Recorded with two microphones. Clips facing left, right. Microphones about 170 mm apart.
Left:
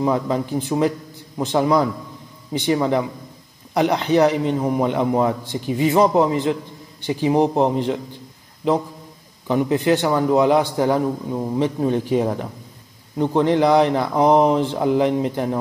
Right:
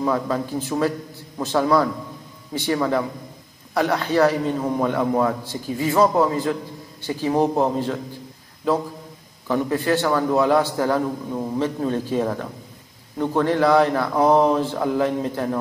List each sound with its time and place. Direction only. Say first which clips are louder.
0.0 s a man's voice: left 2 dB; 20° left (ahead or behind)